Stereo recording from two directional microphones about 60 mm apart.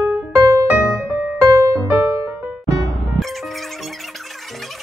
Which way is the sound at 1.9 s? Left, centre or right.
Right.